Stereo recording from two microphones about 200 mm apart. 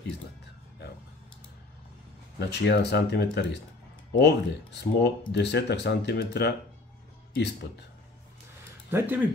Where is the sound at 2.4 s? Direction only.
55° left (ahead or behind).